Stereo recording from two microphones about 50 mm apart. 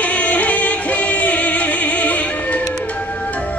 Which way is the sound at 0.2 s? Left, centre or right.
Left.